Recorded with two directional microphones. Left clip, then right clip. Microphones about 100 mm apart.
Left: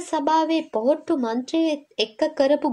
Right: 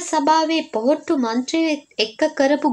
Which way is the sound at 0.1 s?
50° left (ahead or behind).